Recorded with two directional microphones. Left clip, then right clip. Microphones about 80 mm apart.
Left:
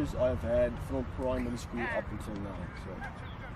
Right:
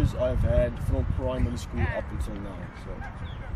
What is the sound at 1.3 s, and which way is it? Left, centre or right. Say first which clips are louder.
Speech: right 2 dB; centre.